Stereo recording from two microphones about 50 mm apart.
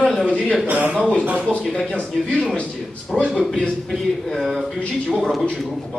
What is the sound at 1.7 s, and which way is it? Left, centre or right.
Speech, left.